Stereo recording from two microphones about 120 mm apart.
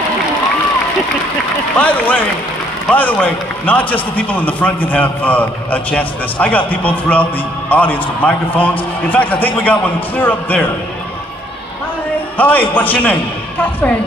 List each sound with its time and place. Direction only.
1.8 s a man's voice: 15° left (ahead or behind)
12.4 s a man's voice: 15° left (ahead or behind)